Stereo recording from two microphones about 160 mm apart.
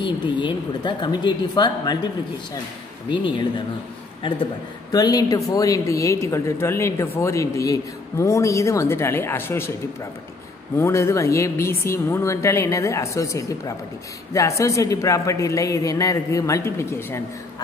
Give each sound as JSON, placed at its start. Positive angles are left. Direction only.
{"t": 0.0, "sound": "speech", "side_deg": 30}
{"t": 3.1, "sound": "speech", "side_deg": 30}
{"t": 4.9, "sound": "speech", "side_deg": 25}
{"t": 10.8, "sound": "speech", "side_deg": 20}